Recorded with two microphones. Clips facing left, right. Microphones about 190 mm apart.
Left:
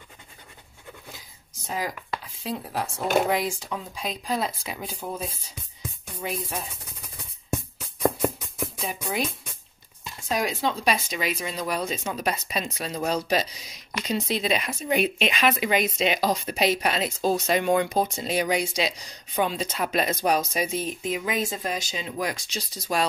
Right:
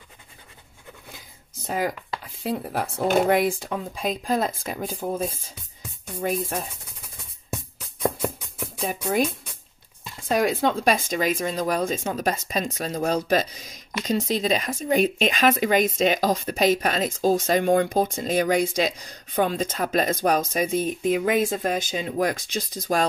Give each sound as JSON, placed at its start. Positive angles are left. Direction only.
{"t": 1.7, "sound": "speech", "side_deg": -55}
{"t": 8.8, "sound": "speech", "side_deg": -45}